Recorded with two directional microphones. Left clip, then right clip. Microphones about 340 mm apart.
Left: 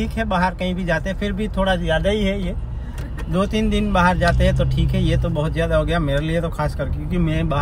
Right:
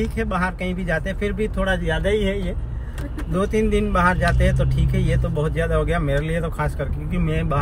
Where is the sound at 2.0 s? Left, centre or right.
Centre.